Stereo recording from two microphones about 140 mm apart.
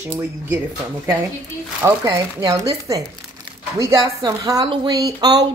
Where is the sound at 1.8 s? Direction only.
20° right (ahead or behind).